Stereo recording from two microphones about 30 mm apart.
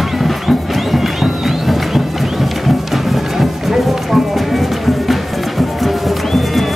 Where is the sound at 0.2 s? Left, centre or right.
Centre.